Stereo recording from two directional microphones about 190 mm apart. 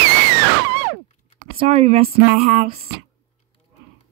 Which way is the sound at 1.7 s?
35° right (ahead or behind).